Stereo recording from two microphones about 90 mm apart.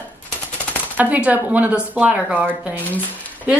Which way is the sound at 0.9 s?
15° right (ahead or behind).